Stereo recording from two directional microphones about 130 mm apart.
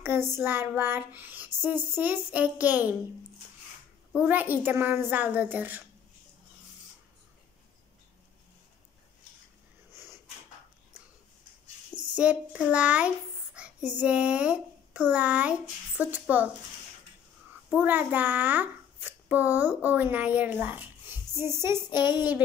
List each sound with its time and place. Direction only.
0.0 s child singing: 20° right (ahead or behind)
4.1 s child singing: 10° right (ahead or behind)
12.2 s child singing: 10° right (ahead or behind)
13.6 s a child's voice: 10° right (ahead or behind)
16.0 s child singing: 10° right (ahead or behind)
17.6 s a child's voice: 15° right (ahead or behind)